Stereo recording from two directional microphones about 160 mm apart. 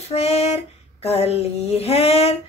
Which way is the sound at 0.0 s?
40° left (ahead or behind).